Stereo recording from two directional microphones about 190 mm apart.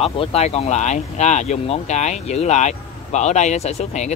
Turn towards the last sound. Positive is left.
turn(degrees=35)  # may be behind; listen again after turning